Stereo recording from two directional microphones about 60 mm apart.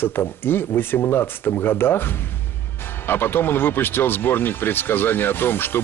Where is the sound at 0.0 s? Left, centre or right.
Left.